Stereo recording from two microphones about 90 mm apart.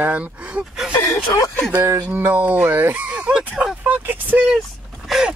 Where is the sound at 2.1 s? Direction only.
20° right (ahead or behind).